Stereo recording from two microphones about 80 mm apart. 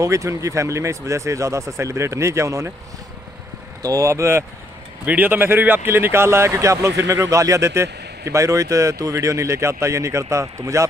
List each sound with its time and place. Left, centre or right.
0.0 s speech: right
3.8 s speech: right
5.0 s speech: right